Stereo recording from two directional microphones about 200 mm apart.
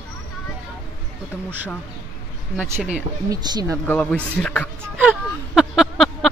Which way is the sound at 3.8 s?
5° left (ahead or behind).